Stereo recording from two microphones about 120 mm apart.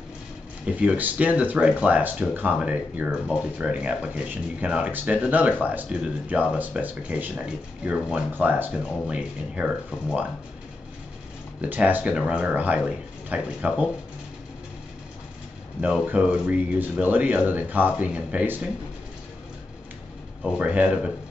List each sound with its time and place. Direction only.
0.7 s speech: 10° right (ahead or behind)
11.7 s speech: 15° right (ahead or behind)
15.8 s speech: 10° right (ahead or behind)
20.5 s speech: 10° right (ahead or behind)